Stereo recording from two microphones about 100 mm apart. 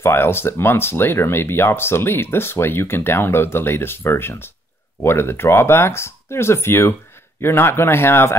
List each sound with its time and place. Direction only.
0.0 s speech: 25° left (ahead or behind)